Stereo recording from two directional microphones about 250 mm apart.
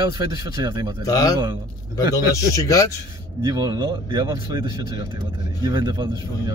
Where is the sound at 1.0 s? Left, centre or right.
Centre.